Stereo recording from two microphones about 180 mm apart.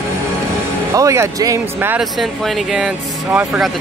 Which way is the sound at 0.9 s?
15° right (ahead or behind).